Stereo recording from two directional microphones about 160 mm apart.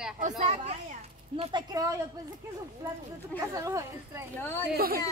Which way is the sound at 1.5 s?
25° right (ahead or behind).